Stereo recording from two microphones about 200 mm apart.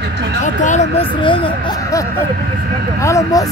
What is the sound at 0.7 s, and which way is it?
Speech, 35° left (ahead or behind).